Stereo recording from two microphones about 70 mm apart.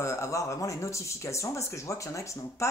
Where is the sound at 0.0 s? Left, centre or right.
Left.